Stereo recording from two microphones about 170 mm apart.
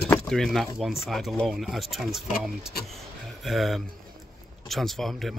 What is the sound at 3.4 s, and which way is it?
Speech, centre (ahead or behind).